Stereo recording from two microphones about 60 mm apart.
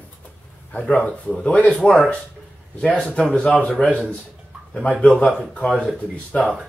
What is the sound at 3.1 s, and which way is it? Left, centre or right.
Speech, centre.